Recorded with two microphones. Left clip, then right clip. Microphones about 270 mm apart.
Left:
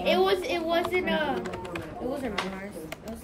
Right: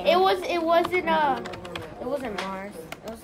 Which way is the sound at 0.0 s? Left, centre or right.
Right.